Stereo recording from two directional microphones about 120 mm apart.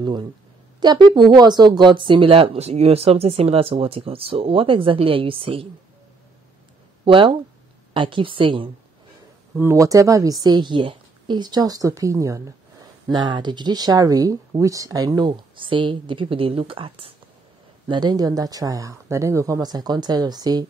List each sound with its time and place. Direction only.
0.0 s speech: 40° right (ahead or behind)
7.1 s speech: 45° right (ahead or behind)
9.6 s a woman's voice: 25° right (ahead or behind)
13.1 s speech: 40° right (ahead or behind)
17.8 s speech: 40° right (ahead or behind)